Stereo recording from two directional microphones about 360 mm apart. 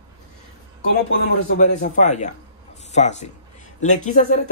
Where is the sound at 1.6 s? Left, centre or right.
Left.